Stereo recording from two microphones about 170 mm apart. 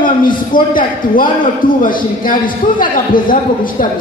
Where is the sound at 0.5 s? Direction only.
55° left (ahead or behind).